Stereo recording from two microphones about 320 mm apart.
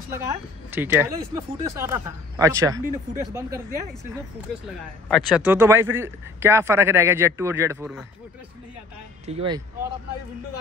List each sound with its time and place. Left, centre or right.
0.2 s a man's voice: centre
9.2 s a man's voice: centre